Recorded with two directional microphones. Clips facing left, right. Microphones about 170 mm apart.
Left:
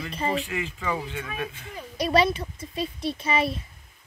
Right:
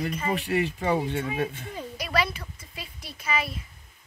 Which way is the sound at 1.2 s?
30° right (ahead or behind).